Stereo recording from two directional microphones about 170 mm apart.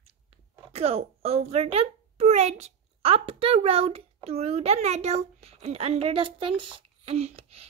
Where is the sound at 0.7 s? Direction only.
35° right (ahead or behind).